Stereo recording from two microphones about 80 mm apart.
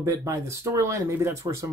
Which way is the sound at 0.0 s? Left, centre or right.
Right.